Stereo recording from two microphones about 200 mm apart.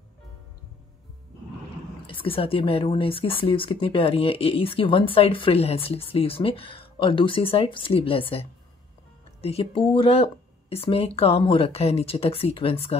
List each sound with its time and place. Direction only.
2.2 s speech: 30° left (ahead or behind)